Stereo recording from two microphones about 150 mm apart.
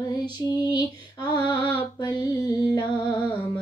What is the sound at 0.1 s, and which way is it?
Female singing, 30° left (ahead or behind).